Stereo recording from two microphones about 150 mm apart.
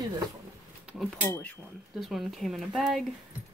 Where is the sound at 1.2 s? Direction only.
20° left (ahead or behind).